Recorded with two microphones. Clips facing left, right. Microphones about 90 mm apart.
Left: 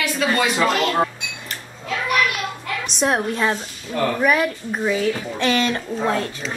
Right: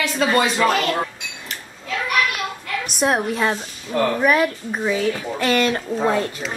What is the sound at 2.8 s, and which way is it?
Speech, centre (ahead or behind).